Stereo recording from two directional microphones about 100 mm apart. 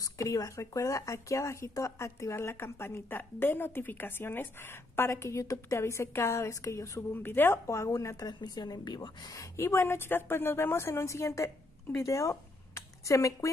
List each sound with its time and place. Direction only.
0.0 s speech: 35° left (ahead or behind)
7.2 s speech: 20° left (ahead or behind)
8.4 s a woman's voice: 45° left (ahead or behind)